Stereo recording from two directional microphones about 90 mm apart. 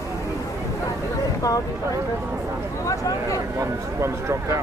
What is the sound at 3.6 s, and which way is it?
Speech, 30° right (ahead or behind).